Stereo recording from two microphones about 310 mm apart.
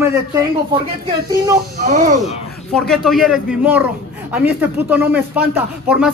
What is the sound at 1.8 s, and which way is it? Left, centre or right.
Speech, right.